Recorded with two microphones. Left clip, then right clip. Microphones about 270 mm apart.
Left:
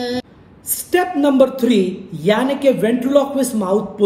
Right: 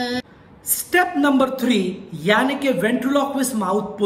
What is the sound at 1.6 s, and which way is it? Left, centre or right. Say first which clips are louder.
A man's voice: left 5 dB; centre.